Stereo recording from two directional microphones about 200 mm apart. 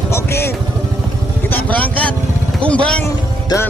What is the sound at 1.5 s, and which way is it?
Speech, 5° left (ahead or behind).